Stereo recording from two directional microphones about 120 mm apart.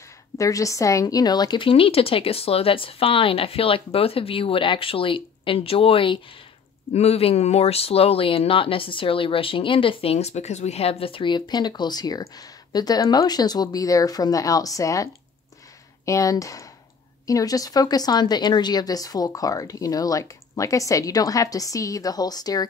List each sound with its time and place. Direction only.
0.4 s speech: 25° left (ahead or behind); by 6.1 s 50° left (ahead or behind)
6.9 s speech: 60° left (ahead or behind); by 15.0 s 30° left (ahead or behind)
16.1 s speech: 30° left (ahead or behind)